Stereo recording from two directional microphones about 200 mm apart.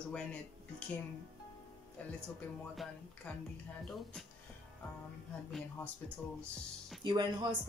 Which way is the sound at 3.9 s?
Centre (ahead or behind).